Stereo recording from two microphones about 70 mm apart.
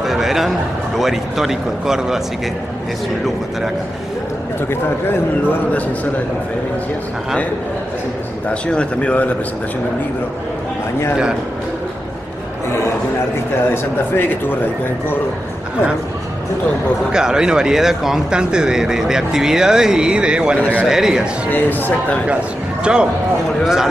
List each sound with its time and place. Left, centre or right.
0.0 s a man's voice: centre
8.5 s a man's voice: centre
13.7 s speech: left
17.1 s speech: centre
21.5 s speech: left
22.9 s speech: centre